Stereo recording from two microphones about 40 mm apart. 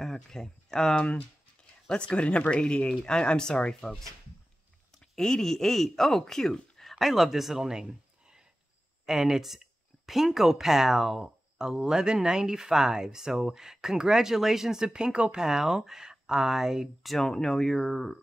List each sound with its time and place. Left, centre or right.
0.0 s speech: centre
2.0 s speech: left
5.1 s speech: centre
14.9 s speech: right
15.4 s speech: centre
17.2 s speech: centre